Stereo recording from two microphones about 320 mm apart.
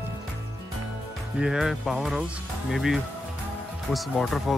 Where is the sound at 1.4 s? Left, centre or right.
Centre.